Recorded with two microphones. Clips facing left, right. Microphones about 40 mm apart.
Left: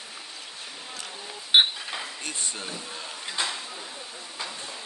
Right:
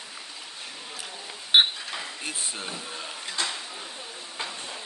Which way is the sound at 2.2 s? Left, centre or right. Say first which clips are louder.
Right 1 dB; centre.